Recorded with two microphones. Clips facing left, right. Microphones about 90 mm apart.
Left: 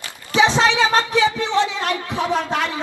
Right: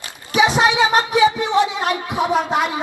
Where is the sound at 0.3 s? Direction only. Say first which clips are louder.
Right 1 dB; 15° right (ahead or behind).